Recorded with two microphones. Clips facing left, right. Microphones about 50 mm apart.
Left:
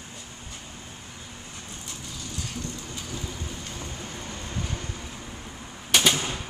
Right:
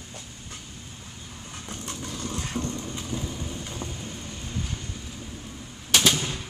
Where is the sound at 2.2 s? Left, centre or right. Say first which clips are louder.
Right 5 dB; right.